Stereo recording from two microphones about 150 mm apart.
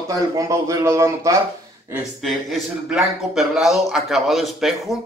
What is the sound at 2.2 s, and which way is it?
Speech, centre (ahead or behind).